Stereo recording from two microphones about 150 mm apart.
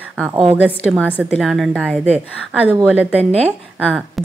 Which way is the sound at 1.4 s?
Centre (ahead or behind).